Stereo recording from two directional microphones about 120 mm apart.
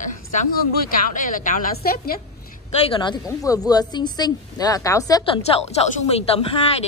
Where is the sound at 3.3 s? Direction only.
30° left (ahead or behind).